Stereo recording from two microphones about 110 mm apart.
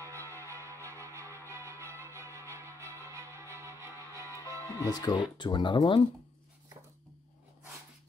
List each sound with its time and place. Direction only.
0.0 s music: 25° right (ahead or behind)
4.8 s speech: 40° left (ahead or behind)